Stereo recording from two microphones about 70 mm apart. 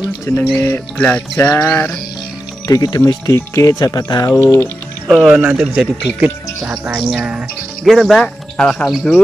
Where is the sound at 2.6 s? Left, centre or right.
Left.